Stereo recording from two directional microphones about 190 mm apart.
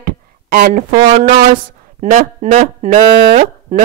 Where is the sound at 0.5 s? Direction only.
50° right (ahead or behind).